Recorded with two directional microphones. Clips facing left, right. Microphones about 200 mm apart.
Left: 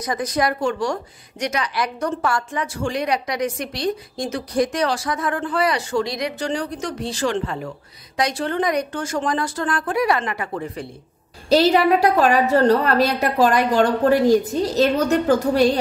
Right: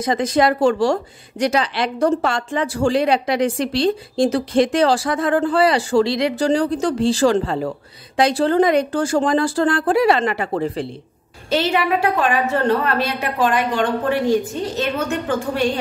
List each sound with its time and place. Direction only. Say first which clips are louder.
0.0 s a woman's voice: right 5 dB; 25° right (ahead or behind)
11.4 s a woman's voice: left 4 dB; 40° left (ahead or behind)